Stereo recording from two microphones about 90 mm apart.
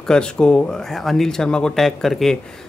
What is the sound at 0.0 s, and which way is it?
Speech, 10° left (ahead or behind).